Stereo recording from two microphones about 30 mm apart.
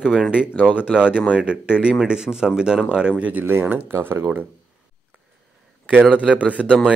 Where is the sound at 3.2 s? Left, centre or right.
Right.